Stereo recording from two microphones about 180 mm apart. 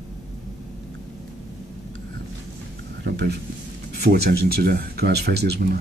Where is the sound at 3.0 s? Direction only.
65° right (ahead or behind).